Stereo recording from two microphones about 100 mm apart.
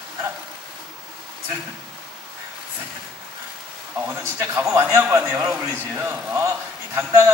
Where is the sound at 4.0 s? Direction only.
25° right (ahead or behind).